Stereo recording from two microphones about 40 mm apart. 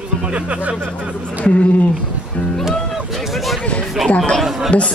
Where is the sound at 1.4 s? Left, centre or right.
Left.